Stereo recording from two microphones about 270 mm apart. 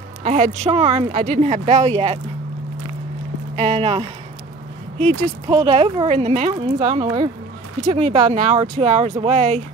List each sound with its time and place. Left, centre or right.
0.2 s a woman's voice: right
3.5 s speech: right
5.5 s speech: centre